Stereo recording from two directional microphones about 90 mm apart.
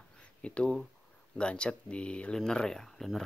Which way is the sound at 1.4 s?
10° left (ahead or behind).